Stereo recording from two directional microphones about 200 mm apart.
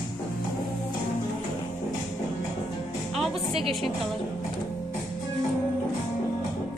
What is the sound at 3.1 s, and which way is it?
Speech, centre (ahead or behind).